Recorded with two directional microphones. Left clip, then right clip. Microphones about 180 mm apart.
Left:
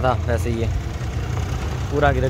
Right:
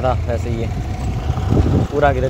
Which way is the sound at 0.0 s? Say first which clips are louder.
Right 1 dB; 5° left (ahead or behind).